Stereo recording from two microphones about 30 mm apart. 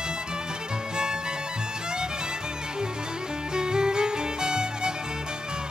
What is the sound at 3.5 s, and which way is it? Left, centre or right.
Music, right.